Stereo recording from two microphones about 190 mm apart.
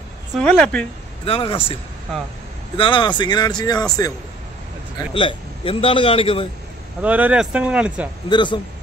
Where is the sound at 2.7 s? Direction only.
25° left (ahead or behind).